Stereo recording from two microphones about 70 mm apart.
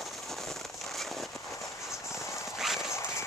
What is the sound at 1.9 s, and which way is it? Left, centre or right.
Clip-clop, left.